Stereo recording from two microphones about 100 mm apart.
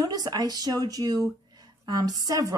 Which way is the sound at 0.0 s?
40° right (ahead or behind).